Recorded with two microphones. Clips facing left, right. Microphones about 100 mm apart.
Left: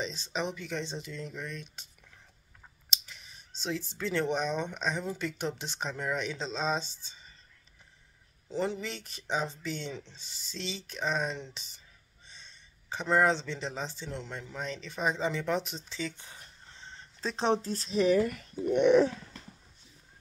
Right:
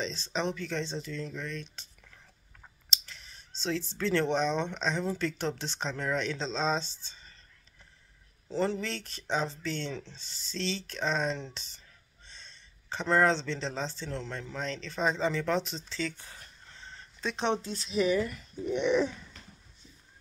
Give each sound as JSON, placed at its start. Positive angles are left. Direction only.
{"t": 0.0, "sound": "speech", "side_deg": 10}
{"t": 2.9, "sound": "speech", "side_deg": 15}
{"t": 8.5, "sound": "speech", "side_deg": 15}
{"t": 17.3, "sound": "speech", "side_deg": 35}